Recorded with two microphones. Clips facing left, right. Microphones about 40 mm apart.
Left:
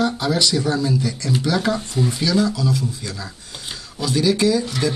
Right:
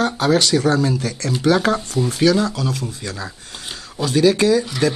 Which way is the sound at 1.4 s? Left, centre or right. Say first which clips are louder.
Right 6 dB; right.